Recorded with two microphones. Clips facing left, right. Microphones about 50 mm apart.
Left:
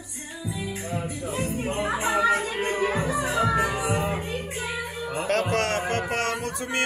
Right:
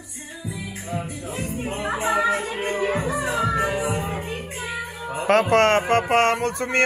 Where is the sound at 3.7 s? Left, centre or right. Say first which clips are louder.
Right 1 dB; centre.